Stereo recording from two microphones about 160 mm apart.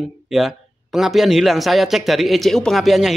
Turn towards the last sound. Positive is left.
turn(degrees=0)  # may be behind; listen again after turning